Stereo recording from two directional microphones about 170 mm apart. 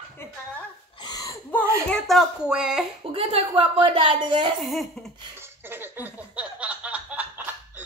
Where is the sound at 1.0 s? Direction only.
25° left (ahead or behind).